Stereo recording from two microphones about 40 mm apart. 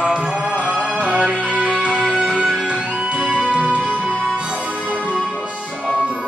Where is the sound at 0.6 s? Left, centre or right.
Right.